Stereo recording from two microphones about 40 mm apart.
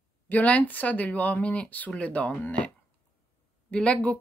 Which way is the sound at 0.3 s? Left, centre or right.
Left.